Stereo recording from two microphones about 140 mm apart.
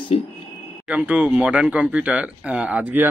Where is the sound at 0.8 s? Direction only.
10° right (ahead or behind).